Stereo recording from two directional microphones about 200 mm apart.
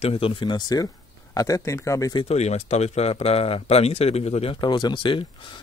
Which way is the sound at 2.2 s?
35° left (ahead or behind).